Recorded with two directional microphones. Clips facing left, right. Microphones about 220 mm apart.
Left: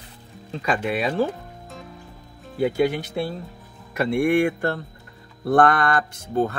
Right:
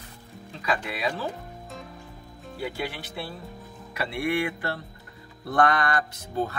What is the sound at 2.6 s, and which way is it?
Speech, 45° left (ahead or behind).